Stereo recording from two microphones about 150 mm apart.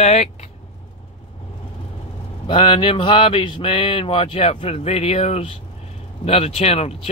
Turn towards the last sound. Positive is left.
turn(degrees=45)  # may be behind; listen again after turning